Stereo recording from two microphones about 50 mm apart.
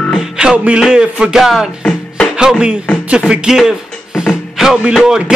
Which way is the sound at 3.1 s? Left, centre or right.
Centre.